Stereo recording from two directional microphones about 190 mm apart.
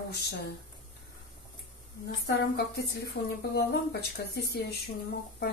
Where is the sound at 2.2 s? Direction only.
60° left (ahead or behind).